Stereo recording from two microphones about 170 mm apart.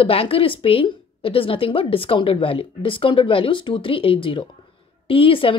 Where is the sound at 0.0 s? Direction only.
35° left (ahead or behind).